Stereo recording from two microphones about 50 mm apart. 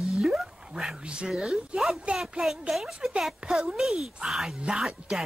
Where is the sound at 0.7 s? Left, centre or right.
Centre.